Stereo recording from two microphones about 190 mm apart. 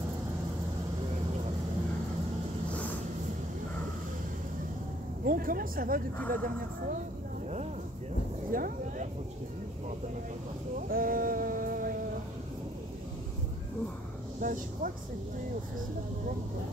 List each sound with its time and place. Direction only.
5.2 s speech: 45° right (ahead or behind)
6.1 s speech: 10° left (ahead or behind)
8.5 s speech: 50° right (ahead or behind)
10.9 s a sound: 50° right (ahead or behind)
14.4 s speech: 45° right (ahead or behind)